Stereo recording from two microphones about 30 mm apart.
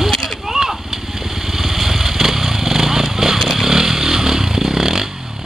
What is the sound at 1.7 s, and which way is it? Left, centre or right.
Vehicle, centre.